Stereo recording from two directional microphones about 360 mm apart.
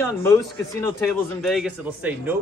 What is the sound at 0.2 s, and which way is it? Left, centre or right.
Speech, centre.